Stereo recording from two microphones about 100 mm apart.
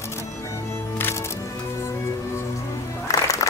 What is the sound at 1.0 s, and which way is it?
Music, 20° left (ahead or behind).